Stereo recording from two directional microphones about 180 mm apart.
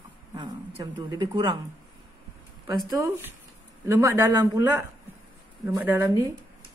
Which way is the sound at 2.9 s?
15° right (ahead or behind).